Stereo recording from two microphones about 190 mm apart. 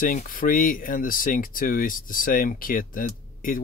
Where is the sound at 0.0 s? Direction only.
45° left (ahead or behind).